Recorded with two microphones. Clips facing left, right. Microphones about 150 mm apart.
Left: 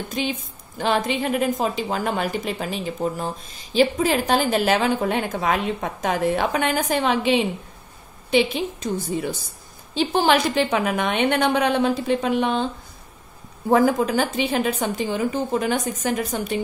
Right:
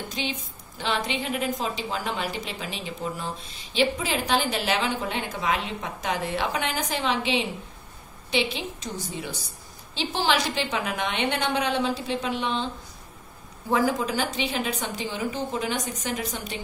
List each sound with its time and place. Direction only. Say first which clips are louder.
0.1 s a woman's voice: left 6 dB; 50° left (ahead or behind)
13.7 s a woman's voice: left 6 dB; 50° left (ahead or behind)